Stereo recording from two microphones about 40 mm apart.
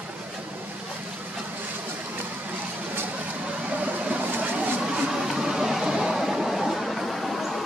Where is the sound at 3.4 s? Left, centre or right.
Right.